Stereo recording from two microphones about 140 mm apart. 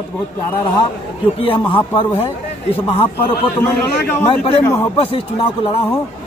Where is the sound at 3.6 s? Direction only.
15° left (ahead or behind).